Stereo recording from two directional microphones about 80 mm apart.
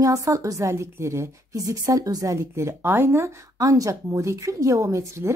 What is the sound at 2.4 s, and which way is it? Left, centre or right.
Speech, right.